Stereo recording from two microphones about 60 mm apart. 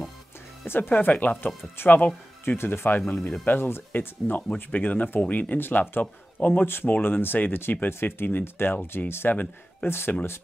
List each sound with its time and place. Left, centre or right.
0.7 s speech: left
2.5 s speech: left